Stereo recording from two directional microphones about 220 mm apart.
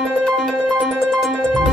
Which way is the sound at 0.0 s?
Centre (ahead or behind).